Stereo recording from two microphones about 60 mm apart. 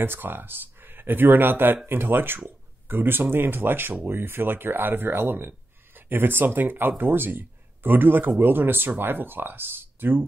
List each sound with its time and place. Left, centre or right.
0.0 s speech: right